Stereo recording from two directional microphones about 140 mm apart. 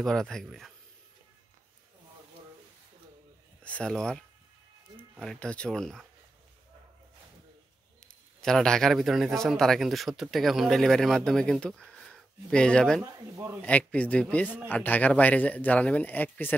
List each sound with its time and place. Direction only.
0.0 s speech: 5° left (ahead or behind)
3.6 s speech: 5° left (ahead or behind)
5.2 s speech: 5° left (ahead or behind)
8.4 s speech: 5° left (ahead or behind)
13.0 s speech: 20° right (ahead or behind)
13.6 s speech: 10° left (ahead or behind)